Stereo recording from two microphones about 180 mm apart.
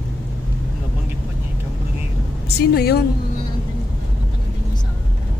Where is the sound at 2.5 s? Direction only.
65° left (ahead or behind).